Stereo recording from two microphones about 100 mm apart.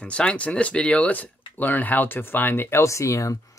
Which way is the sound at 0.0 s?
10° left (ahead or behind).